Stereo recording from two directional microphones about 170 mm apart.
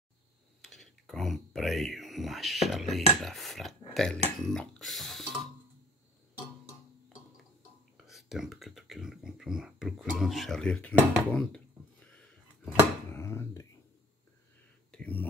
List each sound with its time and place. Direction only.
0.6 s speech: centre (ahead or behind)
8.1 s speech: centre (ahead or behind); by 13.7 s 15° left (ahead or behind)
14.9 s a sound: 5° left (ahead or behind)